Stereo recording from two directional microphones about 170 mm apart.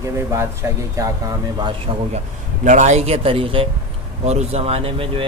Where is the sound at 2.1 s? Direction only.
45° right (ahead or behind).